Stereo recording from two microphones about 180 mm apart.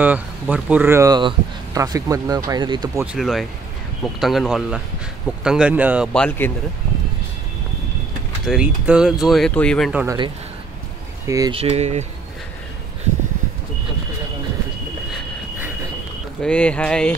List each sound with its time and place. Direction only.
0.0 s speech: 10° right (ahead or behind)
3.0 s speech: 5° right (ahead or behind)
6.1 s speech: 10° left (ahead or behind)
8.5 s speech: 5° right (ahead or behind)
10.0 s speech: 25° right (ahead or behind)
11.5 s speech: 35° right (ahead or behind)
16.4 s speech: 5° left (ahead or behind)